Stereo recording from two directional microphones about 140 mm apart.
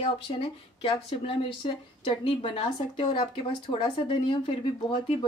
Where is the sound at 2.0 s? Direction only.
40° left (ahead or behind).